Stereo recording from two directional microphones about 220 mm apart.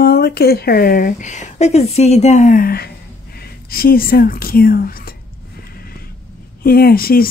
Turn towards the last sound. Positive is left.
turn(degrees=40)  # may be behind; listen again after turning